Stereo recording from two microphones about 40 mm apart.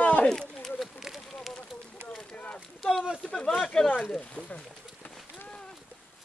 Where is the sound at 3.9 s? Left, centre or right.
Left.